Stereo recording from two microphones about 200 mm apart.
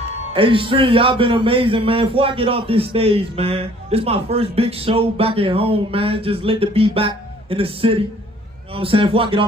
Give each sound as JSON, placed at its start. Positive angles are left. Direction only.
{"t": 0.3, "sound": "a man's voice", "side_deg": -25}